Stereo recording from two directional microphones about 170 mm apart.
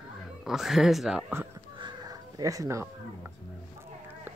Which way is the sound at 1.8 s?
20° right (ahead or behind).